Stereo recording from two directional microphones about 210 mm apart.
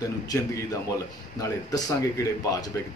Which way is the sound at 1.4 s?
15° left (ahead or behind).